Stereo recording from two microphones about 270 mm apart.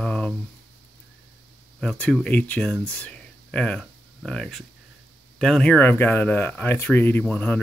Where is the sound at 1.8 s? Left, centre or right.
Centre.